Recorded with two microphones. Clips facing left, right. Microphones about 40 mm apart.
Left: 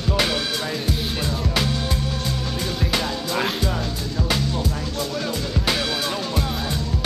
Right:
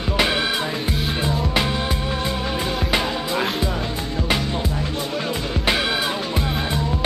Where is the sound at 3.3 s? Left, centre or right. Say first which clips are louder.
Even; centre.